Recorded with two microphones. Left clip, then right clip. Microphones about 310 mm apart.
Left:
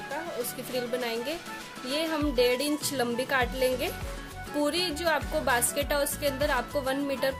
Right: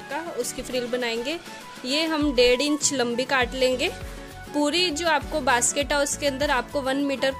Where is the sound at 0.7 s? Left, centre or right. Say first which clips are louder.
Right 4 dB; centre.